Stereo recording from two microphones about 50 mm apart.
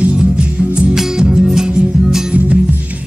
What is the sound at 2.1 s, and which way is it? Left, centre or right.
Music, centre.